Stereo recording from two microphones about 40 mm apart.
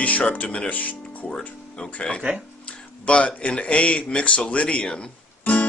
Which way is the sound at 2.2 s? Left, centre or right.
Right.